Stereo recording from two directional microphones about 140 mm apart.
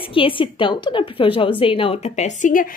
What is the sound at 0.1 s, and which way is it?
A woman's voice, 40° left (ahead or behind).